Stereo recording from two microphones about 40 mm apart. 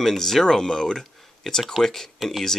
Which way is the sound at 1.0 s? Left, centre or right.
Centre.